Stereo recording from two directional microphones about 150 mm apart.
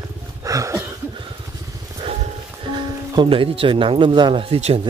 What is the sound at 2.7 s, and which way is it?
Speech, 30° right (ahead or behind).